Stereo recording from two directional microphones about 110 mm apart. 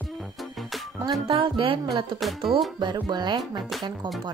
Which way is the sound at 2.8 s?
45° right (ahead or behind).